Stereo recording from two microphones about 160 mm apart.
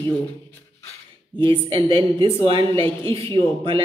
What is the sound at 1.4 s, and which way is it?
A man's voice, 35° right (ahead or behind).